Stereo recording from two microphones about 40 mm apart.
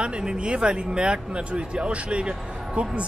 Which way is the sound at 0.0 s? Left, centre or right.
Right.